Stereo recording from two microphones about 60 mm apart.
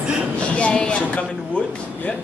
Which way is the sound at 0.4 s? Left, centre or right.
Centre.